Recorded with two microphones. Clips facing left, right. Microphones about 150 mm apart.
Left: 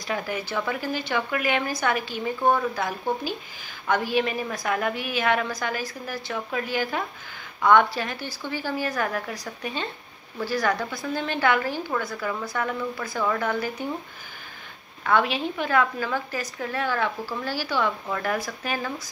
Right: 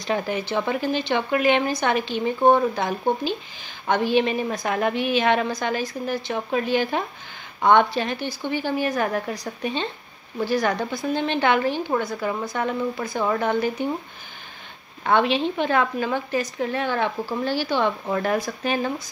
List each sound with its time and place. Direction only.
0.0 s a woman's voice: 25° right (ahead or behind)
15.0 s a woman's voice: 25° right (ahead or behind)